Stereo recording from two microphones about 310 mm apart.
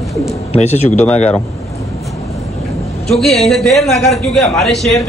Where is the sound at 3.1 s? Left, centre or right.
Centre.